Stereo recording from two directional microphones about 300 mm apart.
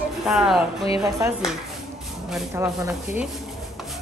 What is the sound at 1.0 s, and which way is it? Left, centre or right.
A woman's voice, centre.